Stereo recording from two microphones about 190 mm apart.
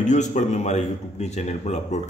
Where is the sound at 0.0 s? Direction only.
40° left (ahead or behind).